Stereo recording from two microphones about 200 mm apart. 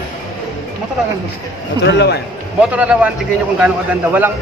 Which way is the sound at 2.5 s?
5° right (ahead or behind).